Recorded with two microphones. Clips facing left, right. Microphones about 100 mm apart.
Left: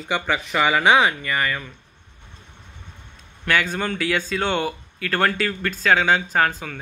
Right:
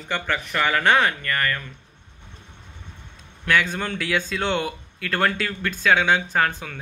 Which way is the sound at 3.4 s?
5° left (ahead or behind).